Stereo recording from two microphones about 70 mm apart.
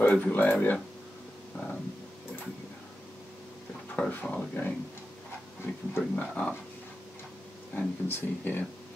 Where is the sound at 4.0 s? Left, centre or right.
Left.